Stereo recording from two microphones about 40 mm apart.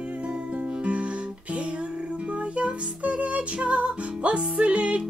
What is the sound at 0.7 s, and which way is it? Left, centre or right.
Music, right.